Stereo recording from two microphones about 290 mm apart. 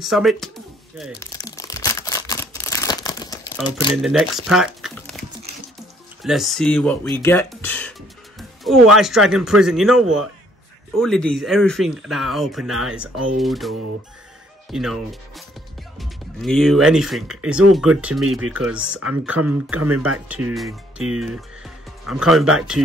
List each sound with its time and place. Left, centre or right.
0.0 s speech: centre
1.2 s camera: centre
3.9 s speech: centre
6.2 s speech: centre
11.0 s speech: centre
18.9 s speech: right
19.2 s speech: centre
19.8 s speech: right
20.2 s speech: centre